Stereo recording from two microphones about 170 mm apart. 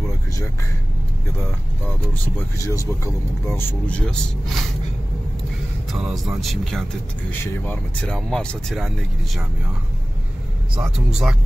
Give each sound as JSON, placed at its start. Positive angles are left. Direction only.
{"t": 2.6, "sound": "speech", "side_deg": 20}
{"t": 5.9, "sound": "speech", "side_deg": 0}
{"t": 7.2, "sound": "speech", "side_deg": 10}
{"t": 10.8, "sound": "speech", "side_deg": -5}